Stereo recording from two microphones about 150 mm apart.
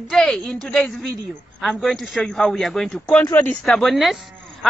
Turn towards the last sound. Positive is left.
turn(degrees=0)  # may be behind; listen again after turning